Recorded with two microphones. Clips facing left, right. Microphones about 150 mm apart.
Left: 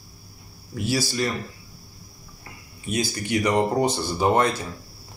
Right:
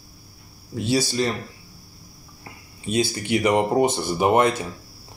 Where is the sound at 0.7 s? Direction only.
25° right (ahead or behind).